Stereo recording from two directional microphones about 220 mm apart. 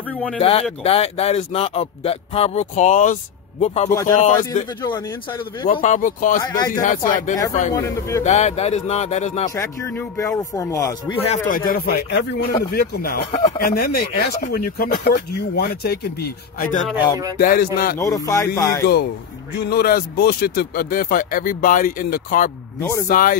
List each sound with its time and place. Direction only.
0.4 s speech: 25° left (ahead or behind)
3.9 s speech: 15° left (ahead or behind)
5.8 s speech: 35° left (ahead or behind)
6.4 s speech: 15° left (ahead or behind)
6.8 s speech: 35° left (ahead or behind)
9.6 s speech: 15° left (ahead or behind)
11.1 s speech: 30° left (ahead or behind)
11.5 s speech: 40° left (ahead or behind)
17.9 s speech: 15° left (ahead or behind)
19.7 s speech: 45° left (ahead or behind)
22.8 s speech: 15° left (ahead or behind)
23.0 s speech: 40° left (ahead or behind)